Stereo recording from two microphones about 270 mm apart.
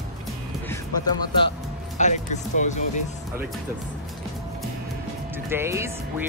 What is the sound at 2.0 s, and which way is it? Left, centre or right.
Speech, left.